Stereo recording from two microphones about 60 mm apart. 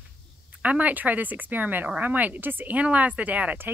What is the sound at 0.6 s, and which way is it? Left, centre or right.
Speech, right.